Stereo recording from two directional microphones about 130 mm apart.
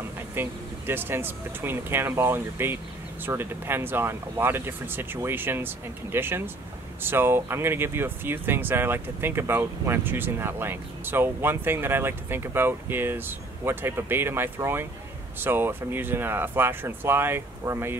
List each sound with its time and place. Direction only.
0.3 s speech: 15° right (ahead or behind)